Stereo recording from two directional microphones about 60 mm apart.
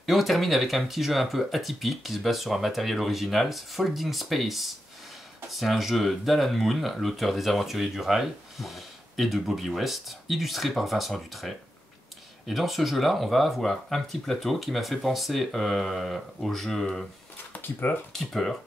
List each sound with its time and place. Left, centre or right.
0.0 s speech: centre
17.5 s speech: left
18.1 s speech: centre